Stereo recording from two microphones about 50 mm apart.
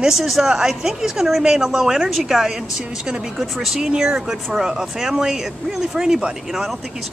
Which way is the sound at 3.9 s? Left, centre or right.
Centre.